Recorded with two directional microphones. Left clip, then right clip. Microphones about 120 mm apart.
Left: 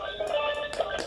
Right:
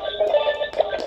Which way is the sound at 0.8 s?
35° right (ahead or behind).